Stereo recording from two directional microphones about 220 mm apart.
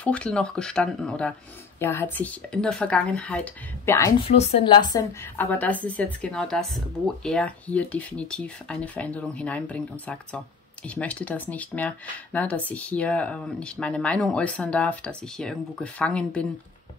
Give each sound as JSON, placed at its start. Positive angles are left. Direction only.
{"t": 0.0, "sound": "speech", "side_deg": 5}
{"t": 4.2, "sound": "a woman's voice", "side_deg": 25}
{"t": 5.4, "sound": "speech", "side_deg": 5}